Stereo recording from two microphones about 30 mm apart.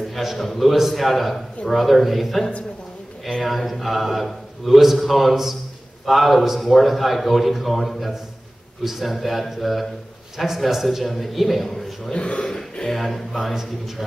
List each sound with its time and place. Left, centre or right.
0.4 s a man's voice: centre
3.4 s a man's voice: centre
12.1 s a man's voice: left
12.9 s a man's voice: centre